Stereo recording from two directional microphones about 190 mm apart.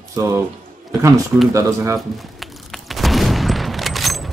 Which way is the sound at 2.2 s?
Centre (ahead or behind).